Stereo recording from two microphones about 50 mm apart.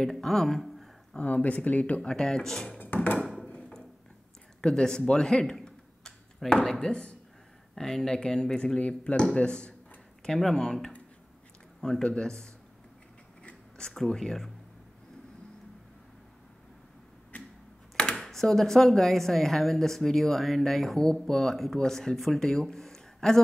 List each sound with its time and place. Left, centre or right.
0.0 s speech: centre
1.1 s speech: left
2.0 s speech: centre
2.8 s a sound: left
4.6 s speech: centre
7.7 s speech: centre
8.7 s speech: left
12.0 s speech: centre
13.4 s scissors: centre
17.3 s arrow: left
18.1 s speech: centre